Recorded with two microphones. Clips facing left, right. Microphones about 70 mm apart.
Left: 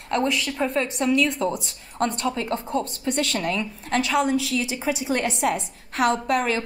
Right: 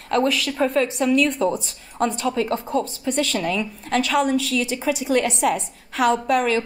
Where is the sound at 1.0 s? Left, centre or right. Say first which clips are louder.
Right 1 dB; centre.